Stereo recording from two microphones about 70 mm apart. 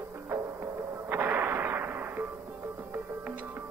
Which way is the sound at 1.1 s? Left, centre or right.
Right.